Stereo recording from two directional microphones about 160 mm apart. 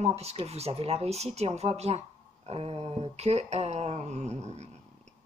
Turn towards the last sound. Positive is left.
turn(degrees=-45)  # may be behind; listen again after turning